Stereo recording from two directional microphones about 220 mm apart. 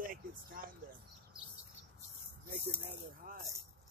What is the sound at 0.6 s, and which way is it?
Speech, 40° right (ahead or behind).